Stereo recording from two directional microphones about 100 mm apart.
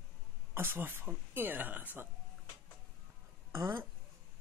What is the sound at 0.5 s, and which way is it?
Speech, 20° right (ahead or behind).